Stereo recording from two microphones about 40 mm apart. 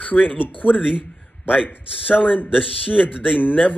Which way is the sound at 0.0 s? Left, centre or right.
Left.